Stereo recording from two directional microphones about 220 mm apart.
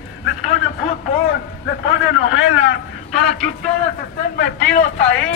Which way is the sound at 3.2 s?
Centre (ahead or behind).